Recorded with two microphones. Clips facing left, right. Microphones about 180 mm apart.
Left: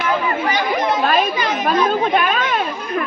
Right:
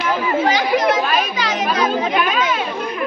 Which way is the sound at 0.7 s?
90° right.